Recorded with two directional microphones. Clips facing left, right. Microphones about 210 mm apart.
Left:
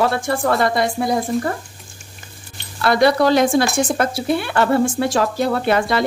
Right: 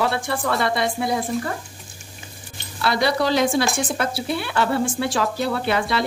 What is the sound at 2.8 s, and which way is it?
A woman's voice, 50° left (ahead or behind).